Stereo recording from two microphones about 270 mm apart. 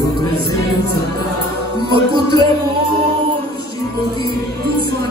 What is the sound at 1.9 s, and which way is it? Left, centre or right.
Music, centre.